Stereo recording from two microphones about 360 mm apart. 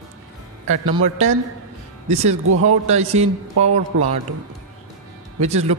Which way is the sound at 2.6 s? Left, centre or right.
Centre.